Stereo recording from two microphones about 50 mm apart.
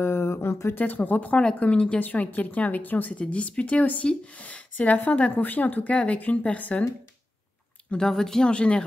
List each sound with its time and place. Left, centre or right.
0.0 s a sound: left
0.7 s a woman's voice: left
2.0 s a woman's voice: left
8.1 s speech: centre
8.5 s speech: left